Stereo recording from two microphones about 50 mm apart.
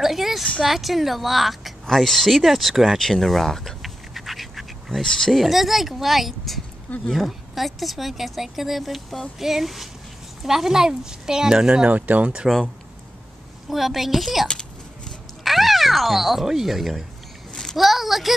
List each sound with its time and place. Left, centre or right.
0.0 s a sound: centre
0.6 s a woman's voice: centre
3.0 s duck: centre
5.0 s speech: centre
5.3 s a woman's voice: centre
11.9 s speech: right
13.7 s a woman's voice: centre
14.5 s a sound: centre
15.4 s speech: centre
17.5 s a sound: centre
17.7 s a woman's voice: centre